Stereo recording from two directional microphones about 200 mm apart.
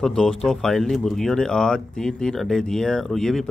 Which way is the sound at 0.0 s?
5° left (ahead or behind).